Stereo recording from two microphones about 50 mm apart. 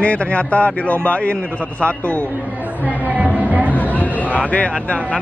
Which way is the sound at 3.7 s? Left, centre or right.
Left.